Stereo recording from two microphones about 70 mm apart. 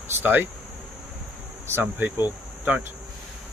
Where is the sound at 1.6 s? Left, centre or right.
Right.